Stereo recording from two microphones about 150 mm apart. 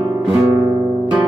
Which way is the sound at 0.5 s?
20° right (ahead or behind).